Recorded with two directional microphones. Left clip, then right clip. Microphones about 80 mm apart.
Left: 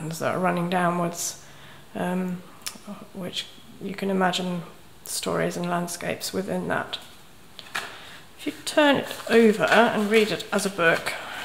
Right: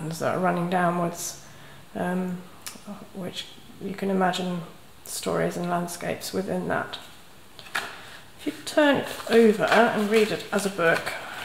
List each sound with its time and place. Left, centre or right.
0.1 s speech: left
8.5 s speech: left
9.0 s speech: centre
9.3 s speech: left
11.1 s a sound: left